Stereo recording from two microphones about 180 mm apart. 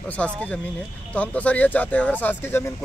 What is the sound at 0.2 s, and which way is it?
Speech, 5° left (ahead or behind).